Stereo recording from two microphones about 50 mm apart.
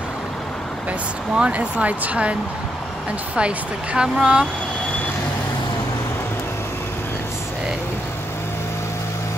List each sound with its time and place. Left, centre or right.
1.3 s speech: right
3.3 s speech: right